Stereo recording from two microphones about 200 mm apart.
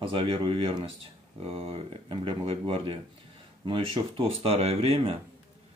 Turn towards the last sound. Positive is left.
turn(degrees=-30)  # may be behind; listen again after turning